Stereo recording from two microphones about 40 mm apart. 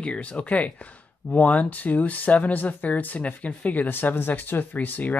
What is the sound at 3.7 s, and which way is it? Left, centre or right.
Speech, left.